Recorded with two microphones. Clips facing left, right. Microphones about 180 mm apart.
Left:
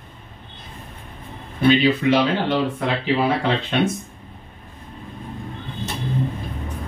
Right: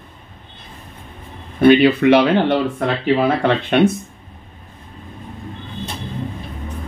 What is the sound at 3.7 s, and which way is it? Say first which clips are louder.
Speech: right 7 dB; 60° right (ahead or behind).